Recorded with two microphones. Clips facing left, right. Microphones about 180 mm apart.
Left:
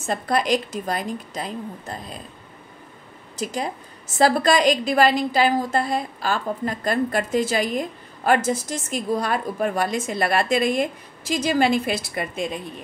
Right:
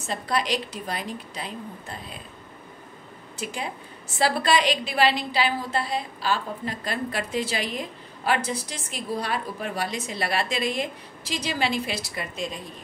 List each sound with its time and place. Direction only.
0.0 s a woman's voice: 50° left (ahead or behind)
3.3 s a woman's voice: 40° left (ahead or behind)